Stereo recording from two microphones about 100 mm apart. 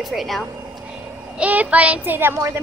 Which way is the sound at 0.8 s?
15° right (ahead or behind).